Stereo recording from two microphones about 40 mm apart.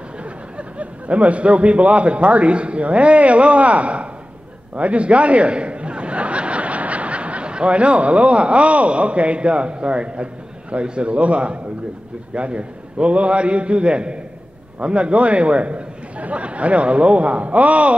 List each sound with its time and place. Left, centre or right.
0.2 s a man's voice: right